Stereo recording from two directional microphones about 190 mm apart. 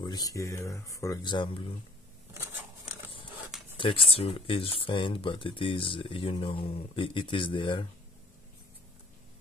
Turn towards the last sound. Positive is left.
turn(degrees=25)  # may be behind; listen again after turning